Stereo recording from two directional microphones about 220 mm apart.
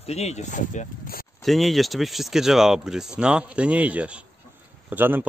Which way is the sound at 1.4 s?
Centre (ahead or behind).